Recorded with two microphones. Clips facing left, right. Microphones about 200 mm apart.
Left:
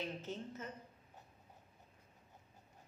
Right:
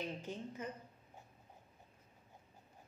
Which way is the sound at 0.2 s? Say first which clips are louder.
Right 1 dB; 15° right (ahead or behind).